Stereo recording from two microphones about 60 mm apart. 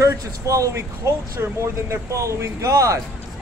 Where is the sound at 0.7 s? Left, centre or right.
Right.